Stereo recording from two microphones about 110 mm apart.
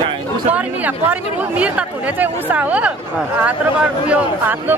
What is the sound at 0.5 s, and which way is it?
Speech, 15° right (ahead or behind).